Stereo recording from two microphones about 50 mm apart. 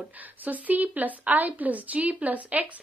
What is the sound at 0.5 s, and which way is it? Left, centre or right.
A woman's voice, right.